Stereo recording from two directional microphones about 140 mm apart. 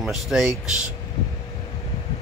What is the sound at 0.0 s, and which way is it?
Speech, centre (ahead or behind).